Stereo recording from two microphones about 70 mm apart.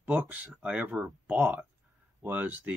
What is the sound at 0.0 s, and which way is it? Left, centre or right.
Speech, right.